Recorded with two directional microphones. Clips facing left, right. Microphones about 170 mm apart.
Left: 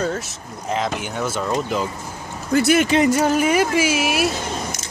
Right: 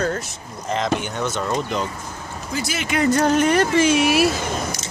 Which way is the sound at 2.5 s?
60° left (ahead or behind).